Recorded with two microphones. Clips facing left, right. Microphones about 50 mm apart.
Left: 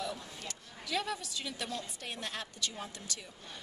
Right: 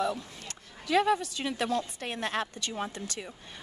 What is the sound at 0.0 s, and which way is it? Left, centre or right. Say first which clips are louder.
A woman's voice: right 8 dB; right.